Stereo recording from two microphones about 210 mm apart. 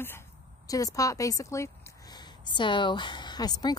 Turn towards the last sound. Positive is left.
turn(degrees=20)  # may be behind; listen again after turning